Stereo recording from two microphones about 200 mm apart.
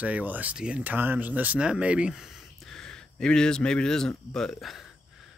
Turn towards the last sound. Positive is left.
turn(degrees=0)  # may be behind; listen again after turning